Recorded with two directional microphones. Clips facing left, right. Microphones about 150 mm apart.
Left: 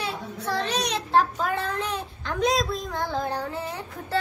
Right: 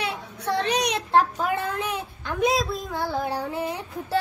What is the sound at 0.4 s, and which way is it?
Child singing, 60° right (ahead or behind).